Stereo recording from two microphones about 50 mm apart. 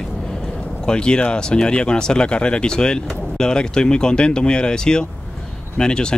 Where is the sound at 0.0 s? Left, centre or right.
Centre.